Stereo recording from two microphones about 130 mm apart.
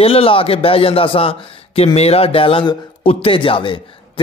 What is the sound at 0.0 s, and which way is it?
Speech, 45° left (ahead or behind).